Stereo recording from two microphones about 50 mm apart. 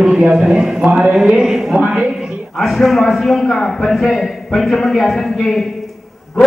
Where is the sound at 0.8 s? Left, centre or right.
Centre.